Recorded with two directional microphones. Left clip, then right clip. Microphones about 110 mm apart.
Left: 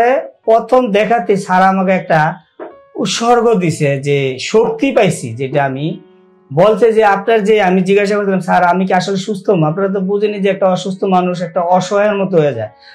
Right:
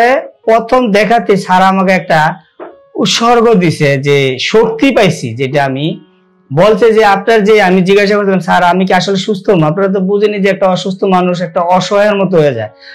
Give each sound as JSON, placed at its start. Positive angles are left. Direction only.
{"t": 0.0, "sound": "a man's voice", "side_deg": -25}